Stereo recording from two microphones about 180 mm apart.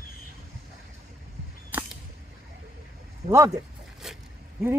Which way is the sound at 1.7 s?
10° right (ahead or behind).